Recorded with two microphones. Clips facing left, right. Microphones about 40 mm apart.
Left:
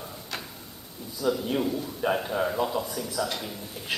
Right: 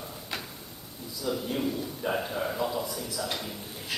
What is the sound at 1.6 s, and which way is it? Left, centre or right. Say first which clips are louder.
A man's voice: left 3 dB; centre.